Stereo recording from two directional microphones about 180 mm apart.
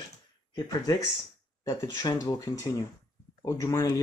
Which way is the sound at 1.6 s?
20° left (ahead or behind).